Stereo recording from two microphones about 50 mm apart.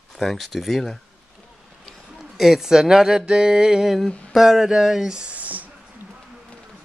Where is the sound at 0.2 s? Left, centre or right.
Centre.